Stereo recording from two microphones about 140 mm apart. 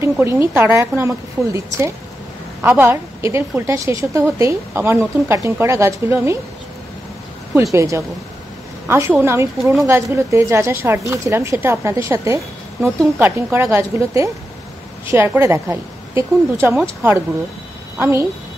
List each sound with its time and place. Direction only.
0.0 s a woman's voice: 20° right (ahead or behind)
7.7 s a woman's voice: 20° right (ahead or behind)